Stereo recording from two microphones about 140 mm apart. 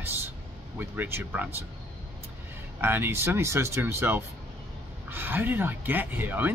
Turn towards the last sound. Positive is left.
turn(degrees=-15)  # may be behind; listen again after turning